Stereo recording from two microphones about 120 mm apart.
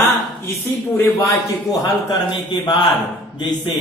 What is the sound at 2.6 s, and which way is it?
Speech, 35° left (ahead or behind).